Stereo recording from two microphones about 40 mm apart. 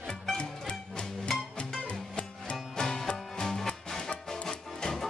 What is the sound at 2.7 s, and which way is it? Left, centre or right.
Music, centre.